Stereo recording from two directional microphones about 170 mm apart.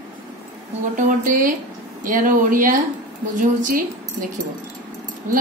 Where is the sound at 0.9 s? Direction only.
50° right (ahead or behind).